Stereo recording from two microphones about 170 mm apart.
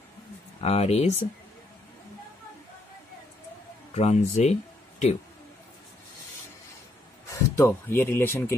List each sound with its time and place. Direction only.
0.6 s speech: 40° left (ahead or behind)
3.9 s speech: 40° left (ahead or behind)
7.2 s speech: 15° left (ahead or behind)